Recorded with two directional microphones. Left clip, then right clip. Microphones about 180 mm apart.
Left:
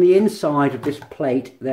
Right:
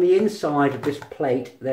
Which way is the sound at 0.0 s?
45° left (ahead or behind).